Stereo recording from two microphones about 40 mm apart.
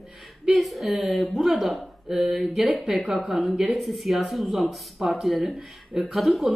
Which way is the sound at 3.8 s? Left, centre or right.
Centre.